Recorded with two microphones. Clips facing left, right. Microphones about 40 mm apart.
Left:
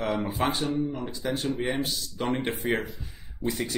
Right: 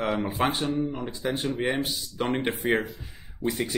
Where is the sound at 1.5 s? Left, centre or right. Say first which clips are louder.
Right 1 dB; centre.